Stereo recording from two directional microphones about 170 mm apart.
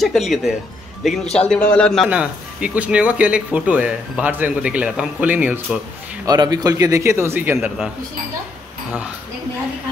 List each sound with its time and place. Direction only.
0.0 s a man's voice: centre (ahead or behind)
2.0 s speech: 10° right (ahead or behind)
6.2 s speech: 20° right (ahead or behind)